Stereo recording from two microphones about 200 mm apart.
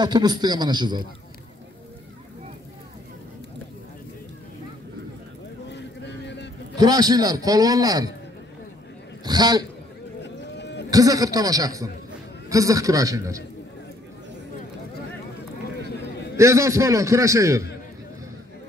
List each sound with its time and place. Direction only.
0.0 s a man's voice: 20° right (ahead or behind)
5.7 s vehicle: 60° left (ahead or behind)
6.8 s a man's voice: 20° right (ahead or behind)
9.2 s a man's voice: 20° right (ahead or behind)
10.2 s a sound: 60° left (ahead or behind)
10.9 s a man's voice: 15° right (ahead or behind)
16.3 s a man's voice: 15° right (ahead or behind)